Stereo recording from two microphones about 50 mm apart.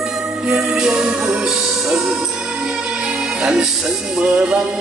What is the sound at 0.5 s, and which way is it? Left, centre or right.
Music, centre.